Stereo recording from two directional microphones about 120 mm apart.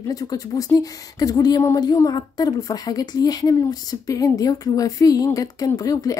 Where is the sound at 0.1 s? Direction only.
30° left (ahead or behind).